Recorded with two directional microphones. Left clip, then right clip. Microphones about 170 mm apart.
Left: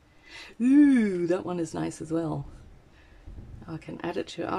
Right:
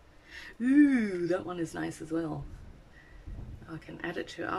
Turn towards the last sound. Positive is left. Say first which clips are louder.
# left 4 dB
turn(degrees=25)  # may be behind; listen again after turning